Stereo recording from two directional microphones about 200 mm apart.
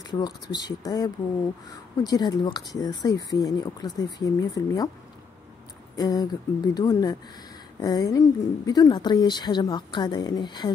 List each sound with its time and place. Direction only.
0.0 s speech: 20° left (ahead or behind)
5.9 s speech: 20° left (ahead or behind)